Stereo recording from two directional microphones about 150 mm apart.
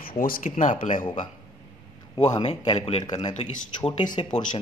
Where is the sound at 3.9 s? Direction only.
30° left (ahead or behind).